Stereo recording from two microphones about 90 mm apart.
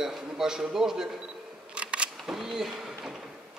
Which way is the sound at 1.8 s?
10° right (ahead or behind).